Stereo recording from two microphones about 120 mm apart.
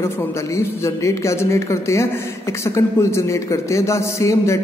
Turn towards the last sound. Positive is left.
turn(degrees=25)  # may be behind; listen again after turning